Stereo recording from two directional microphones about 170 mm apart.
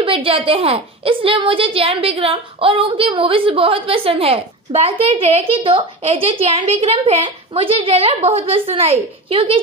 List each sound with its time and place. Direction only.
0.0 s a woman's voice: 30° right (ahead or behind)